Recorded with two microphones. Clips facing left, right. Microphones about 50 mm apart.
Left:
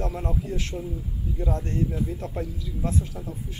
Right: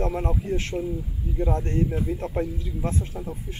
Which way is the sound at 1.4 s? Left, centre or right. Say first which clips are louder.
Right 2 dB; right.